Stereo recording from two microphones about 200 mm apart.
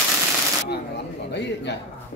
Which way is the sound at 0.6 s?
55° left (ahead or behind).